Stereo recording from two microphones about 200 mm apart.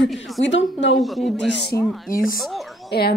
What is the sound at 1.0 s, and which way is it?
Speech, centre (ahead or behind).